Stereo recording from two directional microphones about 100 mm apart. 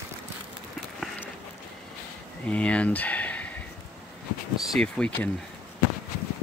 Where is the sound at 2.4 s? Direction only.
10° left (ahead or behind).